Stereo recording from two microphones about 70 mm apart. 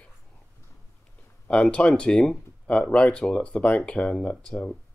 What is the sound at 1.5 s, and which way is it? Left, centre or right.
Speech, centre.